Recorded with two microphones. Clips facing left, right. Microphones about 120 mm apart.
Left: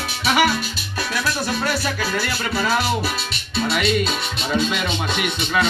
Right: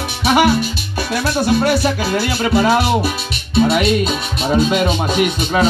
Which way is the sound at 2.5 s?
45° right (ahead or behind).